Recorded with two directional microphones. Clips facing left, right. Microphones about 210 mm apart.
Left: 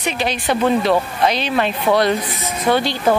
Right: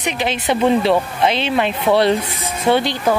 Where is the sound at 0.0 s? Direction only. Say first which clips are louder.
Even; 20° right (ahead or behind).